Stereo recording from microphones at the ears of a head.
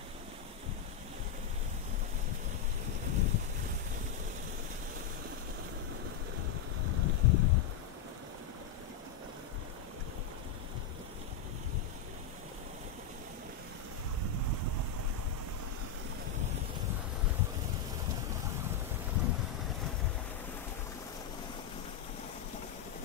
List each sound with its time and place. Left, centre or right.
3.1 s boat: left
6.8 s wind: left
14.2 s boat: right
18.0 s boat: left